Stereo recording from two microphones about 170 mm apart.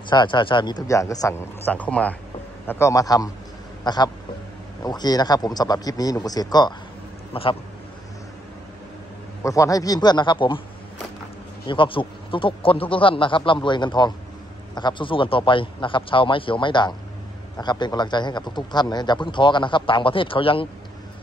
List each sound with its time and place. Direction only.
0.1 s a man's voice: 30° left (ahead or behind)
9.4 s a man's voice: 20° left (ahead or behind)
11.6 s a man's voice: 30° left (ahead or behind)